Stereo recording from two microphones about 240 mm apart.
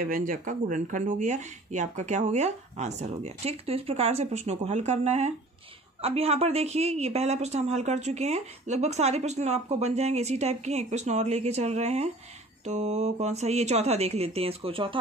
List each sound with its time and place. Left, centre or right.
0.0 s a woman's voice: right